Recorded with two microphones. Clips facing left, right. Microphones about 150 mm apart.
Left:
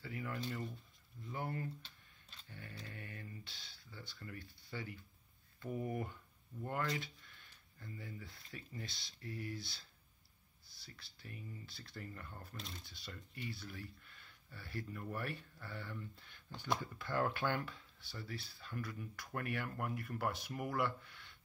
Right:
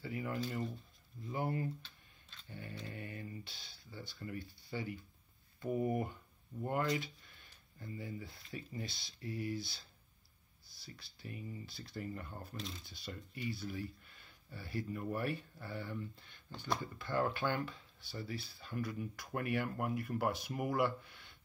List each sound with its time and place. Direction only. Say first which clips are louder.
0.0 s speech: right 4 dB; 15° right (ahead or behind)
2.5 s mantra: right 5 dB; 20° right (ahead or behind)
3.9 s speech: right 6 dB; 15° right (ahead or behind)
6.6 s mantra: right 4 dB; 20° right (ahead or behind)
7.8 s speech: right 5 dB; 15° right (ahead or behind)
11.0 s speech: right 5 dB; 15° right (ahead or behind)
16.5 s speech: even; 15° left (ahead or behind)
16.8 s speech: right 2 dB; centre (ahead or behind)